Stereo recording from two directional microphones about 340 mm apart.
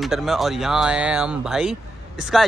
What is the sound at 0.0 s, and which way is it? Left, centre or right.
Speech, centre.